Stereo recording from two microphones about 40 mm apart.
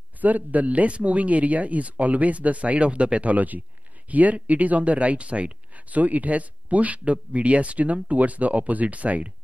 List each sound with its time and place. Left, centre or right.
0.2 s speech: right